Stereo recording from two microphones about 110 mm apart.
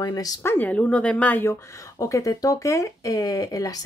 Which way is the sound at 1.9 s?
30° left (ahead or behind).